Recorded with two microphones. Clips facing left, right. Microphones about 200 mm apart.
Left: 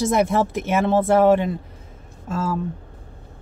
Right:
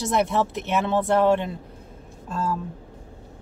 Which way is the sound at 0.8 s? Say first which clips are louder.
Left 7 dB; 50° left (ahead or behind).